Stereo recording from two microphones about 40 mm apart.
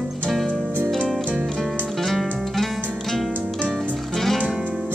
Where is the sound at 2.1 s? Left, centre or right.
Centre.